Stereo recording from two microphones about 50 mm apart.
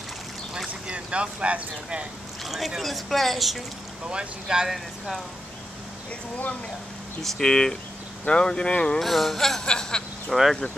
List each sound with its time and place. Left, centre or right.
0.9 s speech: right
2.4 s speech: centre
4.1 s speech: centre
4.6 s speech: centre
7.2 s speech: centre
9.0 s speech: centre
9.7 s a sound: centre
10.5 s speech: centre